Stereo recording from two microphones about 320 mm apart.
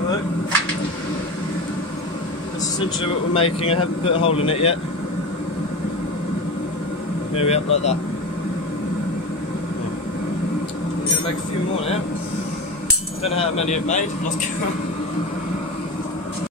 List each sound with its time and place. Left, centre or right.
3.0 s speech: centre
7.3 s speech: centre
13.2 s speech: centre